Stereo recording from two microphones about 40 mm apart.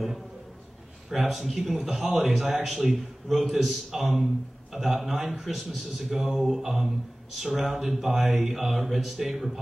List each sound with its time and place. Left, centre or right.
1.1 s a man's voice: centre